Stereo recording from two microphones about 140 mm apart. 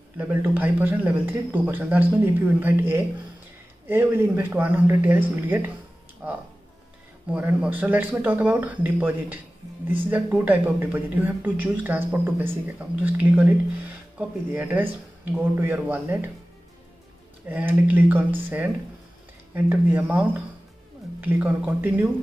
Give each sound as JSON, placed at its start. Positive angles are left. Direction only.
{"t": 0.2, "sound": "speech", "side_deg": -15}
{"t": 17.5, "sound": "speech", "side_deg": -10}